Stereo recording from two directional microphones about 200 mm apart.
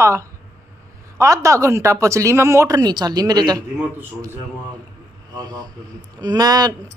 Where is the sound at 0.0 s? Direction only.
15° right (ahead or behind).